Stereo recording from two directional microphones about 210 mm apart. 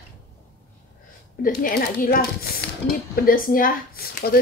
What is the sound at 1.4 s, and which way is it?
A woman's voice, 45° left (ahead or behind).